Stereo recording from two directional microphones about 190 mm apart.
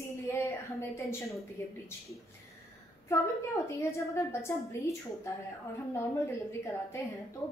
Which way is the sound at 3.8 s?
15° left (ahead or behind).